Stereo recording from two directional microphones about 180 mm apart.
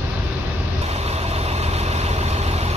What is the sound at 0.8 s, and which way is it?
Vehicle, 35° right (ahead or behind).